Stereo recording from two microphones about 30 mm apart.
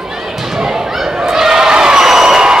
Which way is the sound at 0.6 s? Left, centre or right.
Centre.